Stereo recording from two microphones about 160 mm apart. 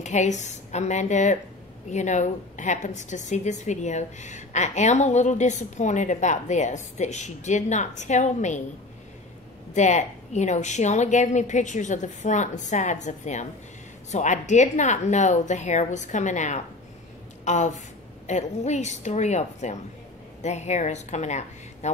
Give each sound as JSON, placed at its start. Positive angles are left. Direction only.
{"t": 0.0, "sound": "a woman's voice", "side_deg": 50}
{"t": 9.8, "sound": "a woman's voice", "side_deg": 50}